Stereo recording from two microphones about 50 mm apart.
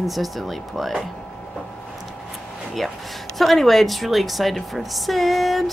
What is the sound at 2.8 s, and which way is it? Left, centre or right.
Speech, centre.